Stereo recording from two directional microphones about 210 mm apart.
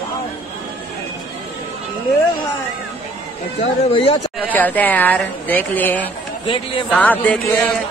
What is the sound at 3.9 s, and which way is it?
Speech, 25° left (ahead or behind).